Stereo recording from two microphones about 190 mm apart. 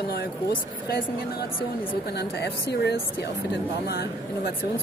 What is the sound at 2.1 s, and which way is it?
A woman's voice, 60° left (ahead or behind).